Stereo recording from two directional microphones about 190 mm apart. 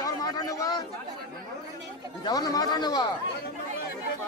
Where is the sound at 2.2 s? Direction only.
20° left (ahead or behind).